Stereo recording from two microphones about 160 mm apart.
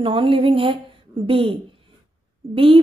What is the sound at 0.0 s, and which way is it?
Speech, 35° right (ahead or behind).